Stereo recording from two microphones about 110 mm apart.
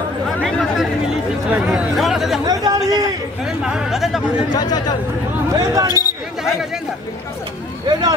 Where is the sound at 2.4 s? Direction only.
35° right (ahead or behind).